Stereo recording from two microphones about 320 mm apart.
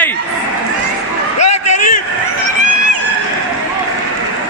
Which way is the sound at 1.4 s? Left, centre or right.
Left.